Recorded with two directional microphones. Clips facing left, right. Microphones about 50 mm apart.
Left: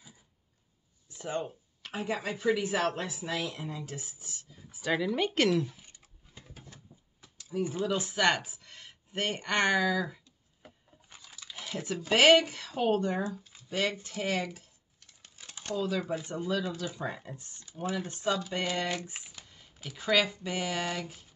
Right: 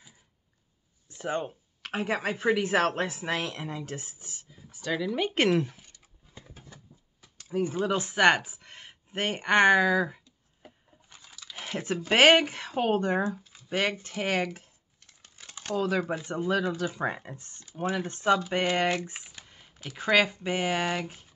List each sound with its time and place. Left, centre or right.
1.1 s speech: right
1.8 s speech: right
4.6 s speech: centre
5.5 s speech: right
7.3 s a sound: right
7.7 s speech: right
11.5 s a sound: right
12.1 s speech: right
15.3 s speech: right
19.1 s shuffling cards: right
20.0 s speech: right